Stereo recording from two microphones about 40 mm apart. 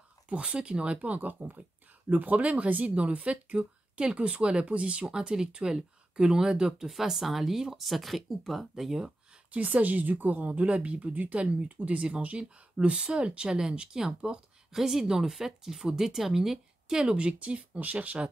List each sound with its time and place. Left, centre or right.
0.3 s speech: right
1.2 s a woman's voice: right; by 9.0 s centre
9.5 s a woman's voice: right
13.5 s speech: centre
14.7 s a woman's voice: centre; by 18.3 s right